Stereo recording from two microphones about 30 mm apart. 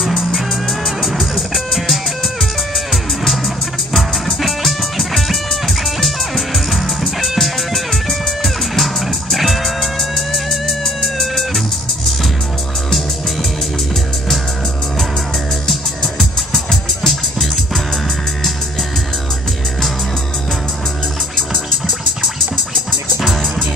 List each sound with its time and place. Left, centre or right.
0.0 s music: centre
16.0 s music: centre